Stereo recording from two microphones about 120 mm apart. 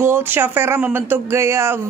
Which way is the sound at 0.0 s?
20° right (ahead or behind).